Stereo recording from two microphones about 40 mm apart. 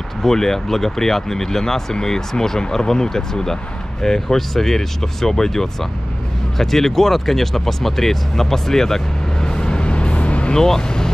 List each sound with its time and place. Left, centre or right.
0.2 s speech: centre; by 10.5 s left
10.5 s speech: centre